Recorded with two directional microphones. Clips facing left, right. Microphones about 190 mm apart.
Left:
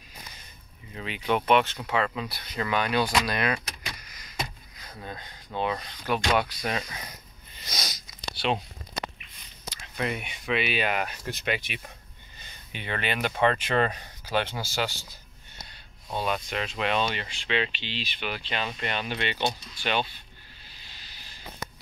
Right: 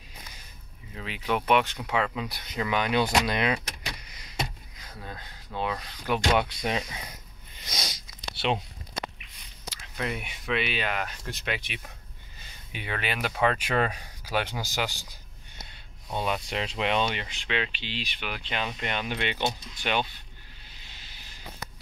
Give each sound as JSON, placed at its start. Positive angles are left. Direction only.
{"t": 0.9, "sound": "speech", "side_deg": 0}
{"t": 5.0, "sound": "speech", "side_deg": 0}
{"t": 6.0, "sound": "speech", "side_deg": -20}
{"t": 7.6, "sound": "a sound", "side_deg": -20}
{"t": 9.9, "sound": "speech", "side_deg": 0}
{"t": 11.2, "sound": "speech", "side_deg": 0}
{"t": 16.2, "sound": "speech", "side_deg": -20}